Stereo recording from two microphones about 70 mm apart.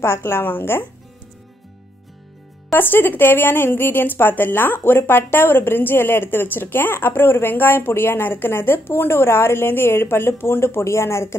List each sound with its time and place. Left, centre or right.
0.0 s a woman's voice: left
2.7 s a woman's voice: left